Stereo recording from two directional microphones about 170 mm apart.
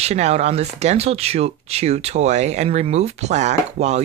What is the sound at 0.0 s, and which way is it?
Speech, 40° right (ahead or behind).